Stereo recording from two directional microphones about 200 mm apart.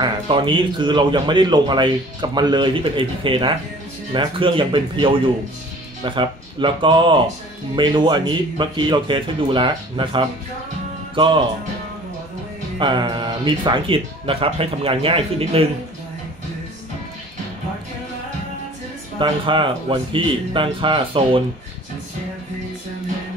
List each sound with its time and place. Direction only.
0.0 s speech: 25° right (ahead or behind)
12.7 s speech: 20° right (ahead or behind)
19.1 s speech: 25° right (ahead or behind)